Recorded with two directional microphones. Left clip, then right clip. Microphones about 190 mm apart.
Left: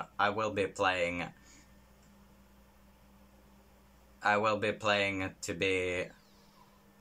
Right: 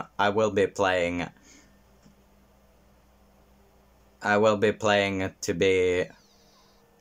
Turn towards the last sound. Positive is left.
turn(degrees=-35)  # may be behind; listen again after turning